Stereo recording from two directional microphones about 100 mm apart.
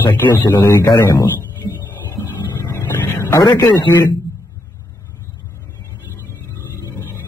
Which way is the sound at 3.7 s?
50° left (ahead or behind).